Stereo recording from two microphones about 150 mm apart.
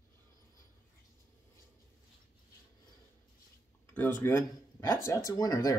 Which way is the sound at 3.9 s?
10° left (ahead or behind).